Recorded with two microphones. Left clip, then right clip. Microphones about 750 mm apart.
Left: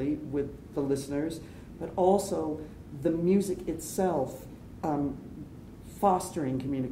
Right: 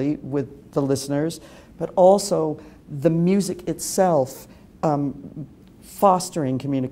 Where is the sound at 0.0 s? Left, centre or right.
Right.